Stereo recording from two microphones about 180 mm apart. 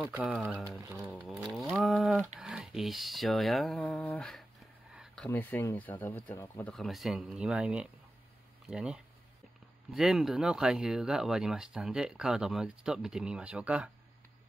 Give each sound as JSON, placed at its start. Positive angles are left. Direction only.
{"t": 0.0, "sound": "speech", "side_deg": -10}
{"t": 6.7, "sound": "speech", "side_deg": 0}